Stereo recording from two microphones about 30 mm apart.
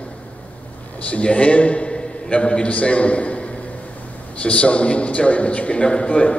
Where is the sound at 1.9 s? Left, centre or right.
Left.